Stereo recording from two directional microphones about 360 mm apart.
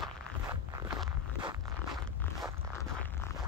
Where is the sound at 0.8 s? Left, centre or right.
Centre.